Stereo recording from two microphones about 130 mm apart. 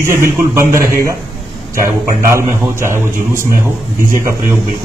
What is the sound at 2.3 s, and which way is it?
A man's voice, 20° right (ahead or behind).